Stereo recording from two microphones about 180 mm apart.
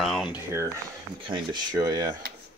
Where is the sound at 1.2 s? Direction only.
25° right (ahead or behind).